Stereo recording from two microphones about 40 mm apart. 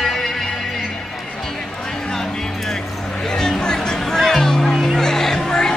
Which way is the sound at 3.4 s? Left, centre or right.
Centre.